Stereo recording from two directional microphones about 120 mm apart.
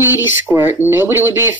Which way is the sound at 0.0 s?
20° right (ahead or behind).